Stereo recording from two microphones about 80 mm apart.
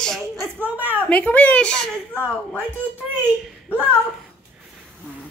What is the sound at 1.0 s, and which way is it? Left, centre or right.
Female singing, centre.